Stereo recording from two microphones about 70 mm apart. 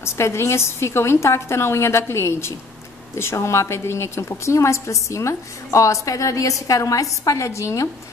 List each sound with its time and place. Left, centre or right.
0.0 s a woman's voice: left